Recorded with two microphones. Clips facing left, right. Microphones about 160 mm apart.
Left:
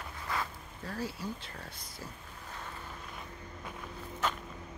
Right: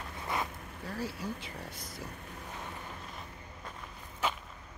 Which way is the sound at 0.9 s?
Centre (ahead or behind).